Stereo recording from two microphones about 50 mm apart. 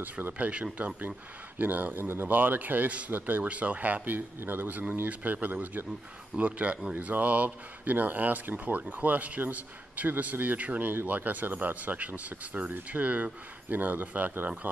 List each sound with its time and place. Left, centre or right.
0.0 s speech: right